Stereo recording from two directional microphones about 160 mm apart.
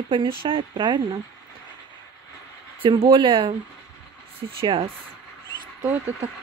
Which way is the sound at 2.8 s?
35° right (ahead or behind).